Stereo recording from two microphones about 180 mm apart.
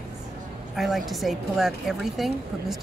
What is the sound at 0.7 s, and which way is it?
A woman's voice, centre (ahead or behind).